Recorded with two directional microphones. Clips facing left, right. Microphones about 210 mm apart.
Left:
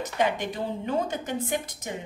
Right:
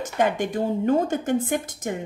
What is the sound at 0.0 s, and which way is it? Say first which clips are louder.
A woman's voice: right 3 dB; 50° right (ahead or behind).